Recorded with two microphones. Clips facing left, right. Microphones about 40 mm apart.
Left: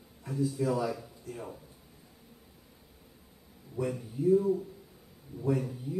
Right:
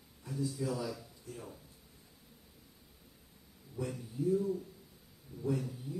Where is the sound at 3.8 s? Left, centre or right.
Centre.